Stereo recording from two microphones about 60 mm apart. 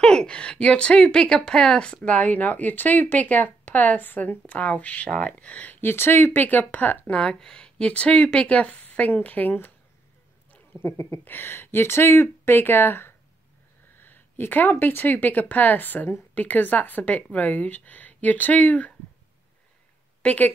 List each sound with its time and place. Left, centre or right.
0.0 s a woman's voice: centre
2.0 s speech: left
5.8 s speech: left
7.1 s speech: centre; by 9.7 s left
10.8 s speech: left
11.2 s speech: left
20.2 s speech: left